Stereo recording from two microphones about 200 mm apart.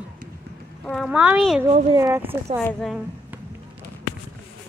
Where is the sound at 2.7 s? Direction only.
Centre (ahead or behind).